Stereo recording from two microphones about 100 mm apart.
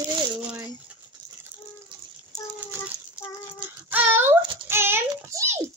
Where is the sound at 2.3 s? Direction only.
25° right (ahead or behind).